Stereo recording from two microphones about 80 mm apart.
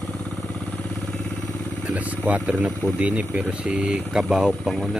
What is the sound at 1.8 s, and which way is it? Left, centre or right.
Speech, centre.